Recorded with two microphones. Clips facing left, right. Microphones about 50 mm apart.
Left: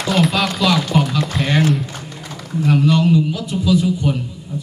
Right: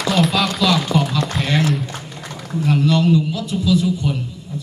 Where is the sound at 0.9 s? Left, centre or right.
Centre.